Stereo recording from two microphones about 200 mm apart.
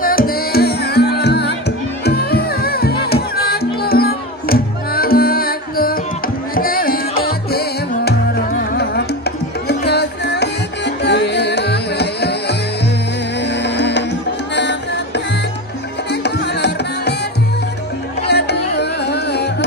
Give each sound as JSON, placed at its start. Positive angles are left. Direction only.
{"t": 0.0, "sound": "music", "side_deg": 45}
{"t": 18.2, "sound": "music", "side_deg": 55}